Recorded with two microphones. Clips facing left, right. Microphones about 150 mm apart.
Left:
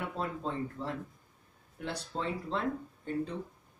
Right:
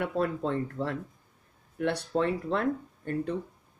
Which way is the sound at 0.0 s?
70° right (ahead or behind).